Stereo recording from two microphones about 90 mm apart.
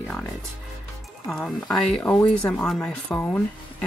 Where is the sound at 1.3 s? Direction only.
5° left (ahead or behind); by 3.4 s 20° left (ahead or behind).